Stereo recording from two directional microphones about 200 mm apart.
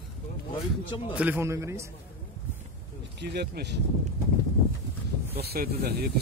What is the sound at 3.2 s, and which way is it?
Speech, 55° right (ahead or behind).